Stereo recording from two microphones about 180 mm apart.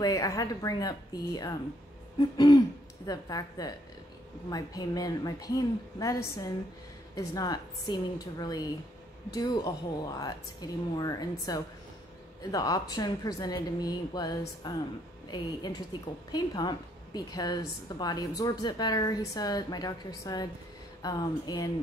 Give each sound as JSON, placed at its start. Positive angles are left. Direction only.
{"t": 0.0, "sound": "a woman's voice", "side_deg": 20}